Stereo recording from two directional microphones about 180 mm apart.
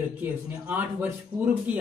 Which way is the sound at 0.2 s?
10° right (ahead or behind).